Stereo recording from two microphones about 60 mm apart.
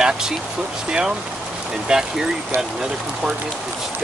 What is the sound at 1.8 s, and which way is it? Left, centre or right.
Speech, centre.